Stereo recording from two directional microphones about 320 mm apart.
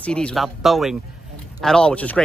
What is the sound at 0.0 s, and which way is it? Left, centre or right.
Speech, centre.